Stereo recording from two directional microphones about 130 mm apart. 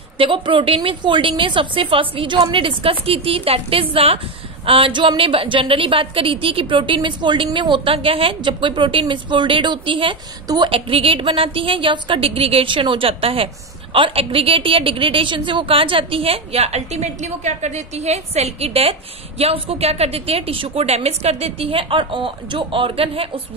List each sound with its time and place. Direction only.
0.2 s a woman's voice: 40° right (ahead or behind)
10.4 s a woman's voice: 30° right (ahead or behind)
10.7 s a woman's voice: 45° right (ahead or behind)